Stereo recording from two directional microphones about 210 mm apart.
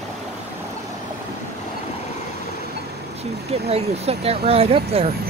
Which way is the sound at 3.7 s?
30° right (ahead or behind).